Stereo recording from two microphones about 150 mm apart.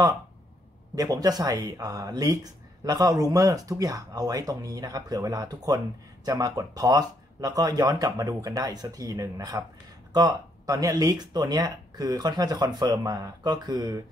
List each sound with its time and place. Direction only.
0.9 s speech: 25° right (ahead or behind)